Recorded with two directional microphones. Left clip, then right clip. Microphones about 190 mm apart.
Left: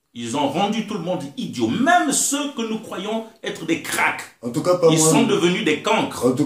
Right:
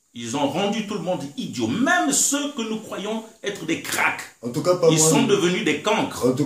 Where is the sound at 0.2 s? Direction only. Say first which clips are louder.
Left 2 dB; 5° right (ahead or behind).